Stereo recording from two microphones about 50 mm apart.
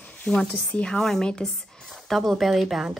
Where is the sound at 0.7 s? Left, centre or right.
Centre.